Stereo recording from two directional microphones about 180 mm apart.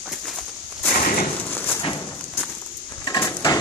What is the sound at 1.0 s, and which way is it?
Bird, 50° left (ahead or behind).